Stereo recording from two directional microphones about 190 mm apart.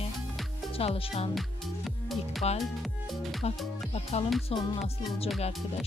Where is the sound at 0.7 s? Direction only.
30° left (ahead or behind).